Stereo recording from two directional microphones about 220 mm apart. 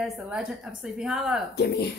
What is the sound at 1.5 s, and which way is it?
Speech, 45° left (ahead or behind).